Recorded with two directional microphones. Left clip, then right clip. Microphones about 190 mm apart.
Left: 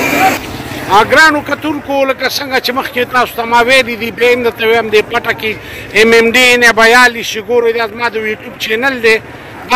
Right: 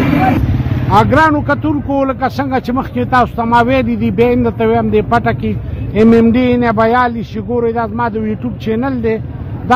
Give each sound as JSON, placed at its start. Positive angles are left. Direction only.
{"t": 0.8, "sound": "speech", "side_deg": 15}
{"t": 1.3, "sound": "speech", "side_deg": 0}
{"t": 6.0, "sound": "a sound", "side_deg": 10}
{"t": 6.7, "sound": "a man's voice", "side_deg": 20}
{"t": 7.1, "sound": "speech", "side_deg": 10}